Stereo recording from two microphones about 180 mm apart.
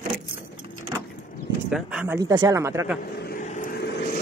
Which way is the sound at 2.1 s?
20° right (ahead or behind).